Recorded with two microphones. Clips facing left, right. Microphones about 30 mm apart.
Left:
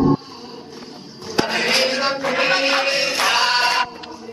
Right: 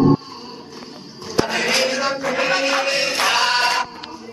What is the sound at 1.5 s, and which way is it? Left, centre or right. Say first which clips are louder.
Music: left 2 dB; left.